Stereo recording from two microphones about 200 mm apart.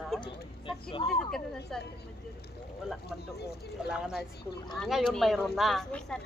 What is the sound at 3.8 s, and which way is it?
Speech, 5° right (ahead or behind).